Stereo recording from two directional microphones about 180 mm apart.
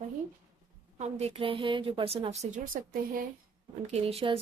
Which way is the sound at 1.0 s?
40° right (ahead or behind).